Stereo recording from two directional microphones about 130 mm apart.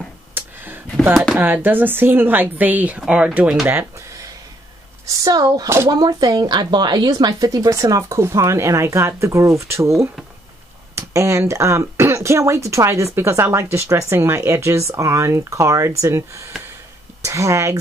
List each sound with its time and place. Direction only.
0.3 s a sound: 15° right (ahead or behind)
1.1 s speech: centre (ahead or behind)
1.4 s a woman's voice: 15° right (ahead or behind)
5.0 s speech: 30° right (ahead or behind)